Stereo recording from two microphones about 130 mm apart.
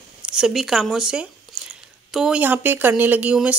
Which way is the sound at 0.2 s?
5° right (ahead or behind).